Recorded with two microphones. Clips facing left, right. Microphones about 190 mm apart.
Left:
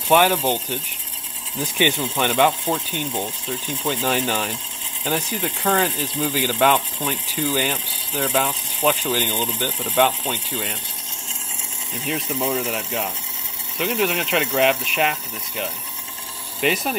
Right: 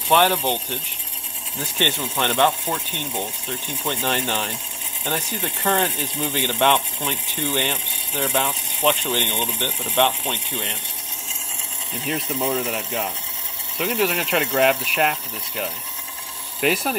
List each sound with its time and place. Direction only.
0.1 s speech: 10° left (ahead or behind)
3.1 s speech: centre (ahead or behind)
3.9 s speech: 10° left (ahead or behind)
12.1 s speech: centre (ahead or behind)